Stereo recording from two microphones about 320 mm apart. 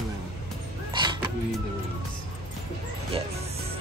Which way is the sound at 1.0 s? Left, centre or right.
Centre.